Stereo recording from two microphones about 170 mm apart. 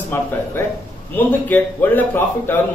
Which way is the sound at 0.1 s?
15° left (ahead or behind).